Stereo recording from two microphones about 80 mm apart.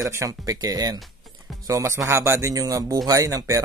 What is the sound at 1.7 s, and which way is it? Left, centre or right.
Speech, right.